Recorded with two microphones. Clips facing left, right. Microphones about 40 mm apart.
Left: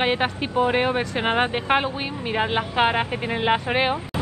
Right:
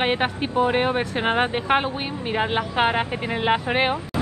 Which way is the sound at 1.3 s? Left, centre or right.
Centre.